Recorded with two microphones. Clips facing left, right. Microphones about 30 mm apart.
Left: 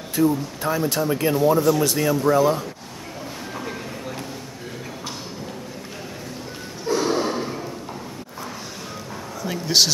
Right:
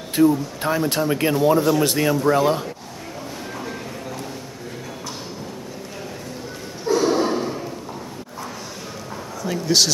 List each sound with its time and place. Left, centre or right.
0.1 s a man's voice: right
6.9 s a sound: centre
9.4 s speech: centre